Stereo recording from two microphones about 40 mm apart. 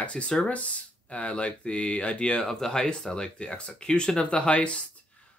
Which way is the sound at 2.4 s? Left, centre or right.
Centre.